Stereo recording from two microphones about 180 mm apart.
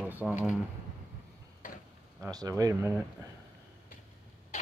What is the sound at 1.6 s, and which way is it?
Tick-tock, 45° left (ahead or behind).